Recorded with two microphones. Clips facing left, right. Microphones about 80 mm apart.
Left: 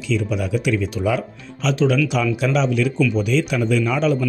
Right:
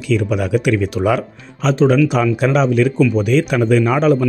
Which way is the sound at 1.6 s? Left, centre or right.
Right.